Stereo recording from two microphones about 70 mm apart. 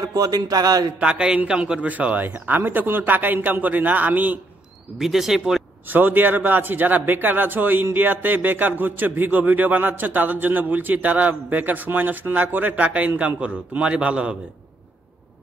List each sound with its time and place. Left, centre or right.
0.0 s a man's voice: right
0.9 s a man's voice: centre
4.9 s speech: centre
5.9 s a man's voice: right